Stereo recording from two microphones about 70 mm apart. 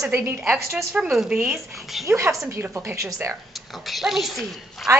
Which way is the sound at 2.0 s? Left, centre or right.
Right.